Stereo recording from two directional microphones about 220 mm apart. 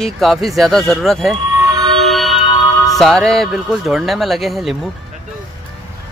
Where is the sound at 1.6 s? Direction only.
20° right (ahead or behind).